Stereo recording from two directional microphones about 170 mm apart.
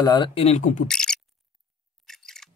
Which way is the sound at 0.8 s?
5° left (ahead or behind).